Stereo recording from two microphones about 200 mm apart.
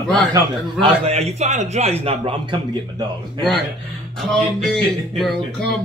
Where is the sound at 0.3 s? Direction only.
30° right (ahead or behind).